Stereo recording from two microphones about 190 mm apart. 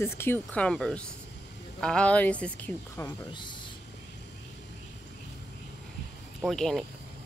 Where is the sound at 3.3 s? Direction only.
25° left (ahead or behind).